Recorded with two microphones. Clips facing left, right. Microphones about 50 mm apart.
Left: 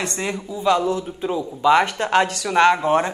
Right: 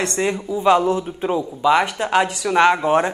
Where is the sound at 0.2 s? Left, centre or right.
Centre.